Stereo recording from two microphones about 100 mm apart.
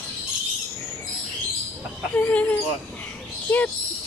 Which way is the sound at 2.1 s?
15° left (ahead or behind).